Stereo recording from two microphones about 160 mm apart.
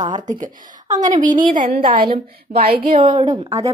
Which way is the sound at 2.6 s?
70° right (ahead or behind).